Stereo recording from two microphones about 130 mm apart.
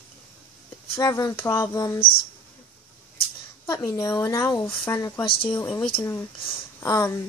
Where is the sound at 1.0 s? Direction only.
30° left (ahead or behind).